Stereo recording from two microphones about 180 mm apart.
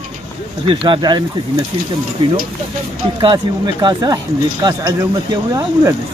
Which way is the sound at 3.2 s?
25° right (ahead or behind).